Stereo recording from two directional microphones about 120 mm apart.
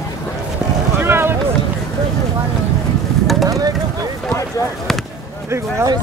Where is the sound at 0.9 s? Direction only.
20° right (ahead or behind).